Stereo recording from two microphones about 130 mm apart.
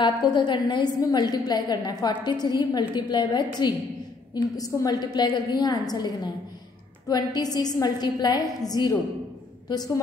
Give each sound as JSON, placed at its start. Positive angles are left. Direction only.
{"t": 0.0, "sound": "a woman's voice", "side_deg": 35}